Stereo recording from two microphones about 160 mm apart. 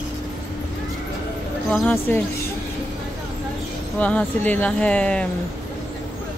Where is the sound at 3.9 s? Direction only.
10° left (ahead or behind).